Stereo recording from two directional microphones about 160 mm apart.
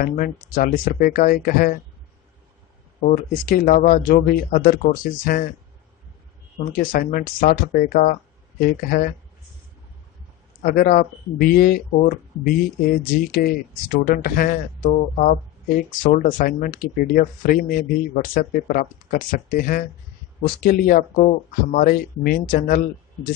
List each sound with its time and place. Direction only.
0.0 s speech: 60° left (ahead or behind)
3.0 s speech: 65° left (ahead or behind)
6.7 s speech: 65° left (ahead or behind)
10.6 s speech: 60° left (ahead or behind)